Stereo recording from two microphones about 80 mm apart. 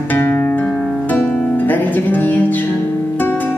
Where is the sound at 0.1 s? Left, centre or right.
Left.